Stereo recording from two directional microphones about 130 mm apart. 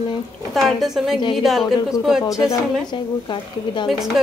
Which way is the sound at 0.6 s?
Centre (ahead or behind).